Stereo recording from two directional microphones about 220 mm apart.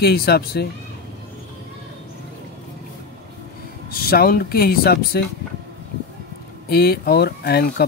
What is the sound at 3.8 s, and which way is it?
Speech, 45° left (ahead or behind).